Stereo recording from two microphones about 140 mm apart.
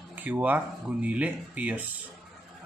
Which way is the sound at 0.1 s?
10° right (ahead or behind).